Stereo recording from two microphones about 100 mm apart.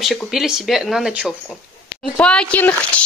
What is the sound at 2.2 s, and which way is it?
Speech, 10° left (ahead or behind).